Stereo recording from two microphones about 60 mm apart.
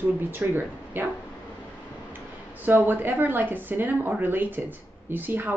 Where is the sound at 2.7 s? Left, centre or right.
Right.